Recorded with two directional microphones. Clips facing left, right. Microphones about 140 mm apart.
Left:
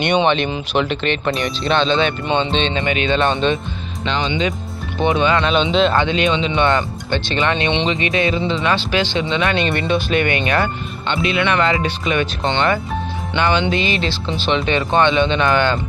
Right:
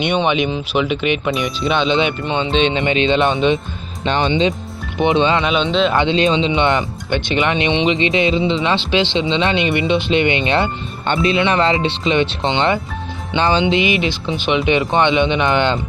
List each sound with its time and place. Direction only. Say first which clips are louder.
0.0 s speech: left 1 dB; 5° right (ahead or behind)
2.2 s speech: right 1 dB; centre (ahead or behind)
2.7 s speech: right 3 dB; 25° right (ahead or behind)
3.3 s speech: right 2 dB; 10° right (ahead or behind)
4.0 s speech: right 4 dB; 50° right (ahead or behind)
4.3 s speech: right 4 dB; 25° right (ahead or behind)
5.4 s speech: left 1 dB; centre (ahead or behind)
6.1 s speech: right 3 dB; 30° right (ahead or behind)
6.5 s speech: even; 20° right (ahead or behind)
13.7 s speech: right 3 dB; 15° right (ahead or behind)